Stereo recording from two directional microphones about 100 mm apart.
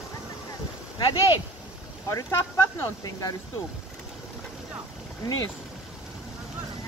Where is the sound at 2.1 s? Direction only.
30° left (ahead or behind).